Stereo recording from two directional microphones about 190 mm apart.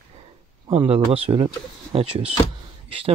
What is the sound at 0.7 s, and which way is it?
Speech, 30° right (ahead or behind).